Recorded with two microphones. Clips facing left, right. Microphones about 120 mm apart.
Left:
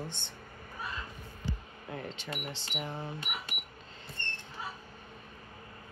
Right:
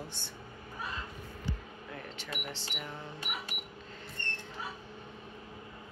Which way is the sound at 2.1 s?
20° left (ahead or behind).